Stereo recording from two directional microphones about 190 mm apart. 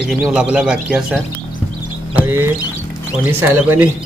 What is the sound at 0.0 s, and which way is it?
Speech, 5° right (ahead or behind).